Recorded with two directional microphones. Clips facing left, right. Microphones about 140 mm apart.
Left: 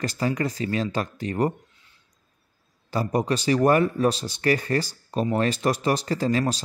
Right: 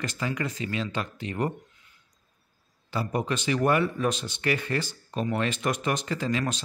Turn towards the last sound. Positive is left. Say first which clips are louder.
# left 5 dB
turn(degrees=35)  # may be behind; listen again after turning